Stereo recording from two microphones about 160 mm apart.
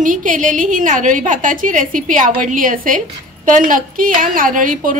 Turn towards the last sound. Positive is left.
turn(degrees=-55)  # may be behind; listen again after turning